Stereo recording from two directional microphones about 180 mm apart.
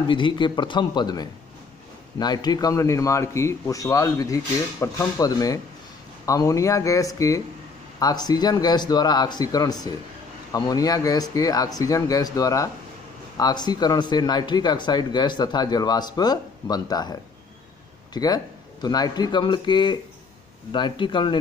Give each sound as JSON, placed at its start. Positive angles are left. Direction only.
{"t": 0.1, "sound": "a man's voice", "side_deg": 25}